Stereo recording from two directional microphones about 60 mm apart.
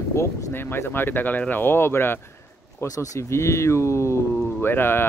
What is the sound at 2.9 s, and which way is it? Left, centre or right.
Speech, left.